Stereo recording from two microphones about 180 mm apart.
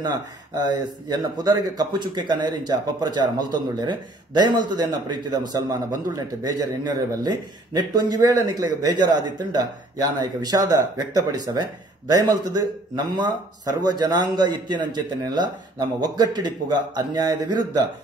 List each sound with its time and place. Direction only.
0.0 s speech: 25° right (ahead or behind)